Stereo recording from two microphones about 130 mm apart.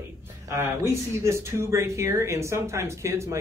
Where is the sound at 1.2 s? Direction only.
20° right (ahead or behind).